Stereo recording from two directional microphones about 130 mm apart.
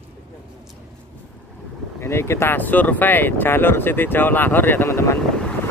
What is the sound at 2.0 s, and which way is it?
Speech, 20° left (ahead or behind).